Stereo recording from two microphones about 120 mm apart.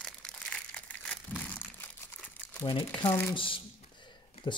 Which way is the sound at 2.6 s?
40° left (ahead or behind).